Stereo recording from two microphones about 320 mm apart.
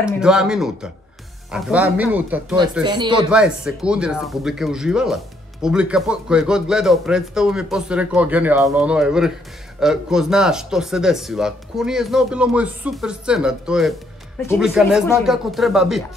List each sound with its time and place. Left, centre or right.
0.2 s speech: centre
3.3 s speech: centre